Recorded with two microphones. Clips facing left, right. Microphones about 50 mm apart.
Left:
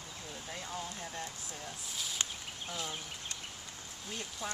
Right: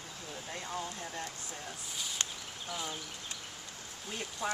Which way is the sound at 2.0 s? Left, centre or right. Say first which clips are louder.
Even; centre.